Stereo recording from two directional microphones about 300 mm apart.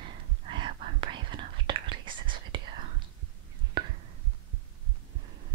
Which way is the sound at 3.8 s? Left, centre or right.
Centre.